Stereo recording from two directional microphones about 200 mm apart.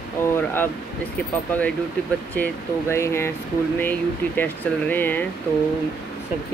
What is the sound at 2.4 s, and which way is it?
Speech, 10° left (ahead or behind).